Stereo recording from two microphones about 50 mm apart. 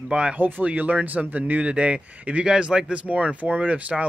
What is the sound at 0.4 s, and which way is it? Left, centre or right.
A man's voice, right.